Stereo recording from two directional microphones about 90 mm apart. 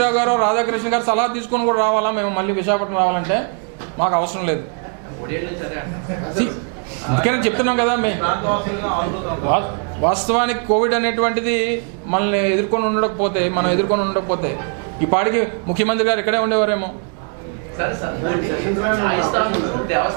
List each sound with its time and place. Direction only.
0.0 s a man's voice: 15° right (ahead or behind)
6.4 s a man's voice: 10° right (ahead or behind)